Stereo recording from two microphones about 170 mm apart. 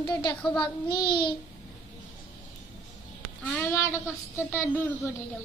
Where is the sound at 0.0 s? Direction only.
25° left (ahead or behind).